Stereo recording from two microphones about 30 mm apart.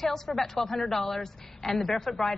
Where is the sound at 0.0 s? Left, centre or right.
Centre.